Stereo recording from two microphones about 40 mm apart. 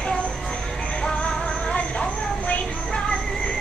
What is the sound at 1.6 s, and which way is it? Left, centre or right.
Vehicle, left.